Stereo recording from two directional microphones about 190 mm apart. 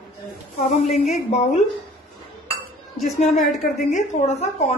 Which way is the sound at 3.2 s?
40° left (ahead or behind).